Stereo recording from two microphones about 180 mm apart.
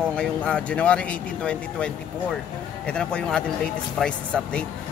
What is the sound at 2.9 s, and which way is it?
Speech, 5° left (ahead or behind).